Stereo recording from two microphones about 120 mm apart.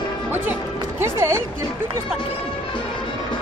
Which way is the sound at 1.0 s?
20° right (ahead or behind).